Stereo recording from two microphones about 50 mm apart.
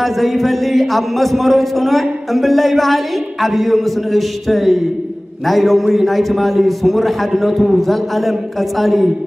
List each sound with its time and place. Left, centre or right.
0.0 s a man's voice: centre